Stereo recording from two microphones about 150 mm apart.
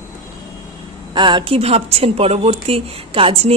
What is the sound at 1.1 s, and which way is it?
Speech, 30° right (ahead or behind).